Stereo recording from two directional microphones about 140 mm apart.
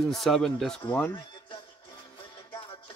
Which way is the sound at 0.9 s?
15° left (ahead or behind).